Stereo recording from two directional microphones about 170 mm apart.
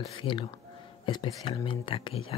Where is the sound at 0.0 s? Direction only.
25° left (ahead or behind).